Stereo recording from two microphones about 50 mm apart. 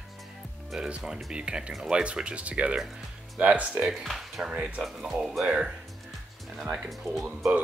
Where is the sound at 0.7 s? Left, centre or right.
Centre.